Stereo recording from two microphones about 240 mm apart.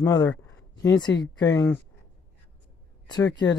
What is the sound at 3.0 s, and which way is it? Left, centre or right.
Speech, centre.